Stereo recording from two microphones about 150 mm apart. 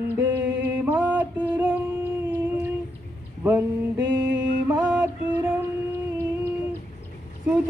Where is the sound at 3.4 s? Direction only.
15° right (ahead or behind).